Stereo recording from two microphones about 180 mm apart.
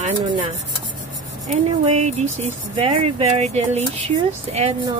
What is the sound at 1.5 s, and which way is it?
Speech, 40° right (ahead or behind).